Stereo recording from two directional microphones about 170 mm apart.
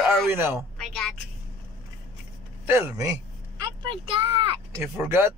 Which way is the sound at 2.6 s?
15° right (ahead or behind).